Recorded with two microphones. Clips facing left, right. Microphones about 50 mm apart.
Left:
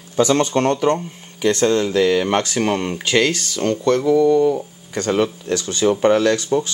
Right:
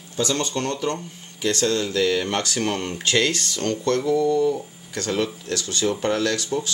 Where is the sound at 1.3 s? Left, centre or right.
Left.